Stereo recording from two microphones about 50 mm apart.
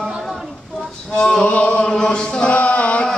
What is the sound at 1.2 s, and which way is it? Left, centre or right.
Male singing, centre.